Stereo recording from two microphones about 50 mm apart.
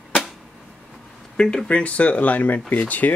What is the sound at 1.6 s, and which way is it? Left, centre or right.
Speech, left.